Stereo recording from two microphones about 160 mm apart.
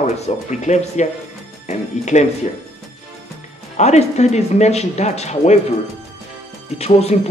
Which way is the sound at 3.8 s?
45° left (ahead or behind).